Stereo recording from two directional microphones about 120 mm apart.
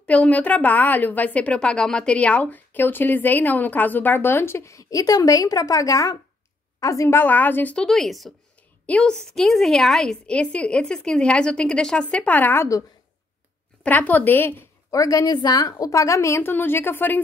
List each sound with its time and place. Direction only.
0.0 s a woman's voice: 10° left (ahead or behind)
13.8 s a woman's voice: 15° left (ahead or behind)